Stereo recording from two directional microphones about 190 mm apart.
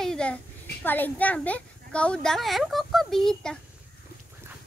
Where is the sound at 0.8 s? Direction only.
10° left (ahead or behind).